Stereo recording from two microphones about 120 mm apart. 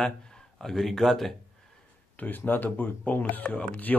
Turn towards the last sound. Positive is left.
turn(degrees=10)  # may be behind; listen again after turning